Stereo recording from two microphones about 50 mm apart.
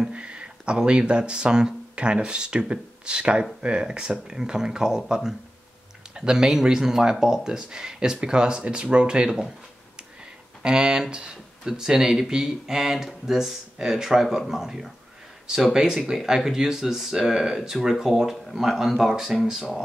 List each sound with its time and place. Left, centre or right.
0.0 s speech: right
10.6 s speech: centre